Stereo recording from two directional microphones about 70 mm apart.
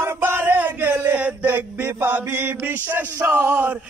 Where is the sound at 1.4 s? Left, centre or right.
Right.